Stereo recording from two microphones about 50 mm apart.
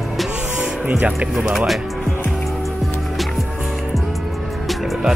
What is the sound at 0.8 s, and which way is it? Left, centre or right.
Speech, right.